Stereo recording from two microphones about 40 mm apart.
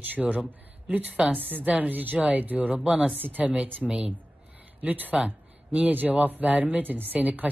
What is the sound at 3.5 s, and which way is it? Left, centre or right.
Speech, right.